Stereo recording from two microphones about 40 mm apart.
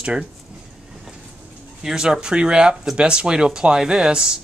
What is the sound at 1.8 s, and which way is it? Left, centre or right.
Speech, centre.